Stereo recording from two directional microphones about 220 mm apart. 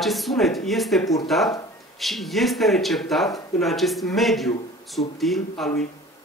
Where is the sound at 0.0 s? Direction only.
Centre (ahead or behind).